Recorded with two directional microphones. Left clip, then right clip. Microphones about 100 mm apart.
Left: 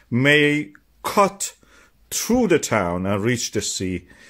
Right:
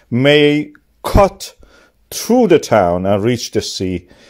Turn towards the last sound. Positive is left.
turn(degrees=-40)  # may be behind; listen again after turning